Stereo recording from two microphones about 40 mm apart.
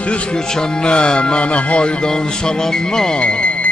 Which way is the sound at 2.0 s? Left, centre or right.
Centre.